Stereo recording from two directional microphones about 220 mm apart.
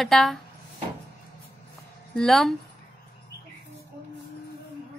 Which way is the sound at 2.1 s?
Centre (ahead or behind).